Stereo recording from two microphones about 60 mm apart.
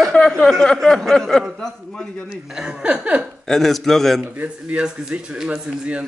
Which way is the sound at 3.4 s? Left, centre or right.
Centre.